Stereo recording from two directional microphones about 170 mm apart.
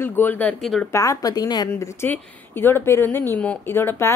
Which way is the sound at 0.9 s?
20° left (ahead or behind).